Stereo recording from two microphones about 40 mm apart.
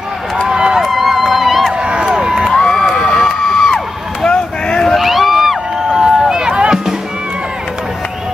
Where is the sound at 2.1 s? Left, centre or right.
Centre.